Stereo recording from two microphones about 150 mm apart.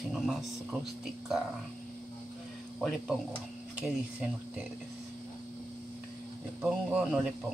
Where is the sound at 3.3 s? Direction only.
10° right (ahead or behind).